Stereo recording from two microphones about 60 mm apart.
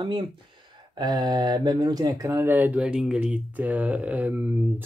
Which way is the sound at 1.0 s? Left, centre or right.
Right.